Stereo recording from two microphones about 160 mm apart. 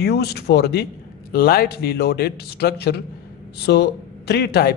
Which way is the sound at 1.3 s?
70° left (ahead or behind).